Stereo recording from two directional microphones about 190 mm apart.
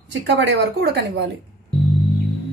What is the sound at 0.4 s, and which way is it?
Speech, 65° right (ahead or behind).